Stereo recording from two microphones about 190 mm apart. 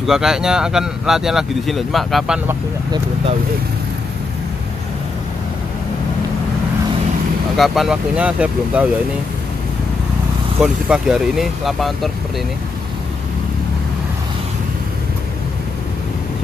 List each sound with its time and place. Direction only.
0.0 s speech: centre (ahead or behind)
7.5 s speech: centre (ahead or behind)
10.6 s speech: 5° right (ahead or behind)